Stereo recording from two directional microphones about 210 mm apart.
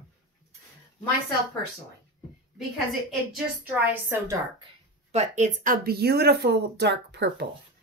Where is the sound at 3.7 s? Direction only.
10° right (ahead or behind).